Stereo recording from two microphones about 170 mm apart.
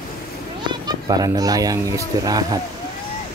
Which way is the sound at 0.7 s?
25° right (ahead or behind).